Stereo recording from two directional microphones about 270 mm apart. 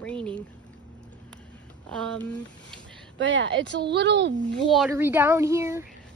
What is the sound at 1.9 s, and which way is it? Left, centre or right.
Speech, centre.